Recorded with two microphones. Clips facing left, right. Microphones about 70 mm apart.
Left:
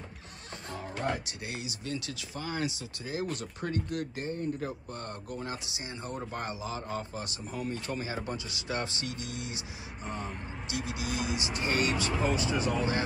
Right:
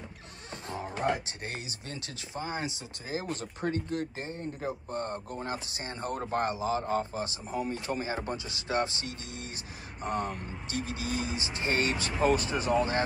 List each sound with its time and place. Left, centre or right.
1.0 s music: right
1.4 s speech: right
6.4 s speech: right
10.0 s speech: right
10.8 s speech: right
12.2 s speech: right